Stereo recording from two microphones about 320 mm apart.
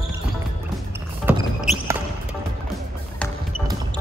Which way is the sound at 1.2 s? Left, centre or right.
Centre.